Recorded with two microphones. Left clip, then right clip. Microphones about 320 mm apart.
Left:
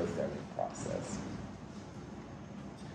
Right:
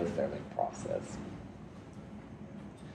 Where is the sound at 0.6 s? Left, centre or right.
Right.